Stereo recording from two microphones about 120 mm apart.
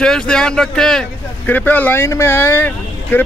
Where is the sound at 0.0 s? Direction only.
5° left (ahead or behind).